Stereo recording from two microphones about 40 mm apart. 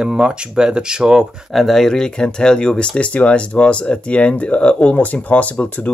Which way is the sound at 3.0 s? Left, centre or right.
Left.